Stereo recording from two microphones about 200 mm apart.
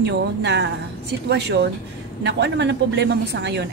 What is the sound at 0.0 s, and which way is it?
A woman's voice, 60° right (ahead or behind).